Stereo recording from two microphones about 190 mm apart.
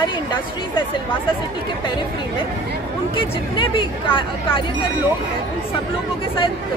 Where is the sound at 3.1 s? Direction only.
25° left (ahead or behind).